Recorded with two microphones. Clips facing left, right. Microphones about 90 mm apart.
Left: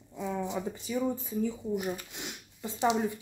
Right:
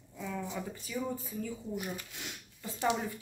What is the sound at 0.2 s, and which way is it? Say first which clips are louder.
Speech: left 5 dB; 20° left (ahead or behind).